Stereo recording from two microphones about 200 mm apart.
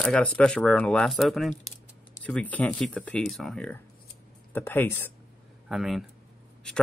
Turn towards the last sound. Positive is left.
turn(degrees=0)  # may be behind; listen again after turning